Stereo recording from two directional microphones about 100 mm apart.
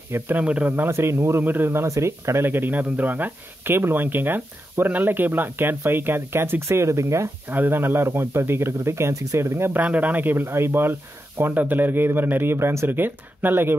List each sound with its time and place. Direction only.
0.1 s speech: 15° right (ahead or behind)